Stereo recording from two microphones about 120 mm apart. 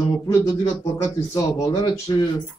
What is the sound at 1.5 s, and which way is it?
Speech, 30° left (ahead or behind).